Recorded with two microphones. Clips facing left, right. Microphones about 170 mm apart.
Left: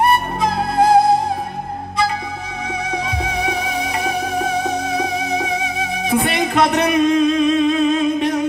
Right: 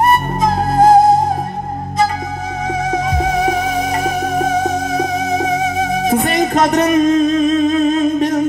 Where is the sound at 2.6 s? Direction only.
45° right (ahead or behind).